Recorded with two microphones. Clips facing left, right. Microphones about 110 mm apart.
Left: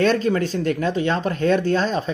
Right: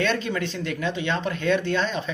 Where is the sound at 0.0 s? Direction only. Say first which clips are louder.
Left 6 dB; 40° left (ahead or behind).